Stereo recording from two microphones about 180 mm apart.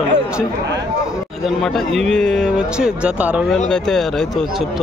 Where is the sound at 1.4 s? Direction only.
Centre (ahead or behind).